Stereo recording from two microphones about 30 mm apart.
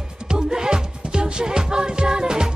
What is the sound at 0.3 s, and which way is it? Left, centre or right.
Music, right.